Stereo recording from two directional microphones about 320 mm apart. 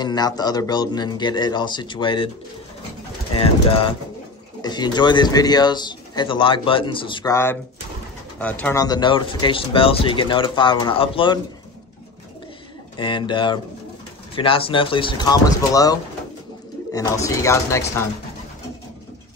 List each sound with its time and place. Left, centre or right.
0.0 s speech: centre
3.3 s speech: centre
12.9 s speech: centre